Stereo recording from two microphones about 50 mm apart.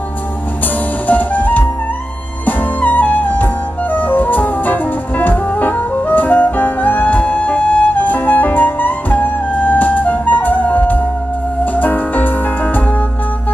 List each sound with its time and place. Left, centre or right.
1.0 s music: left